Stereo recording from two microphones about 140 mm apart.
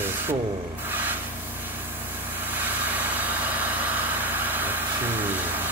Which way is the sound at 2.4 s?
15° right (ahead or behind).